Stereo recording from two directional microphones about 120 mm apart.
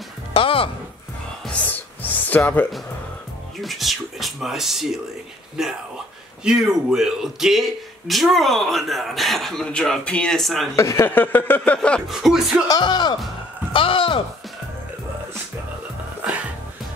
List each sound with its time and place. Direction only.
0.3 s music: 50° left (ahead or behind)
1.4 s music: 10° left (ahead or behind)
2.2 s speech: 15° left (ahead or behind)
3.6 s a man's voice: centre (ahead or behind)
10.8 s a sound: 20° left (ahead or behind)
12.1 s a man's voice: centre (ahead or behind)
12.6 s speech: 35° left (ahead or behind)